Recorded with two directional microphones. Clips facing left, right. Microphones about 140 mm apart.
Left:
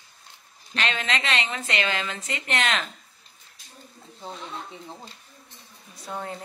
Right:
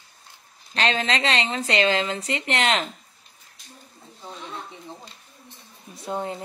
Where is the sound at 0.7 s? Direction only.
35° right (ahead or behind).